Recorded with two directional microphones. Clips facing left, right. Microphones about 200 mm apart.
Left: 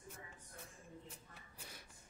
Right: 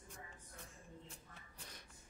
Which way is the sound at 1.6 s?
5° left (ahead or behind).